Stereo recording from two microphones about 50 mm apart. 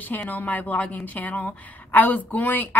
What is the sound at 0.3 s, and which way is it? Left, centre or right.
A woman's voice, left.